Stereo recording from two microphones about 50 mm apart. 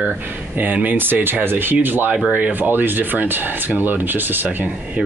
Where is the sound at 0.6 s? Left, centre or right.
Right.